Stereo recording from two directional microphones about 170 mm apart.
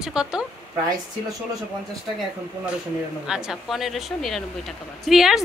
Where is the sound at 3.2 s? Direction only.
5° right (ahead or behind).